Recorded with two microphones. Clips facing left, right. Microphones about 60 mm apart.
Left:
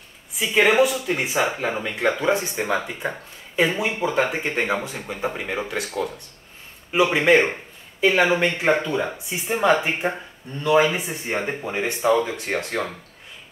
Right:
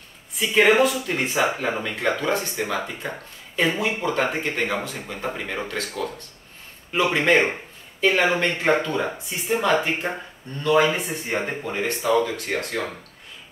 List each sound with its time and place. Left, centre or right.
0.4 s speech: centre
4.4 s speech: centre